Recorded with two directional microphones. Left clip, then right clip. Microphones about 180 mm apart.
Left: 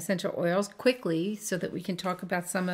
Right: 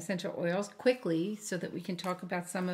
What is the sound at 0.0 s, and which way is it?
Speech, 45° left (ahead or behind).